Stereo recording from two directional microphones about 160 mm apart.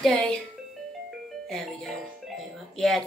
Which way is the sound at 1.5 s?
Centre (ahead or behind).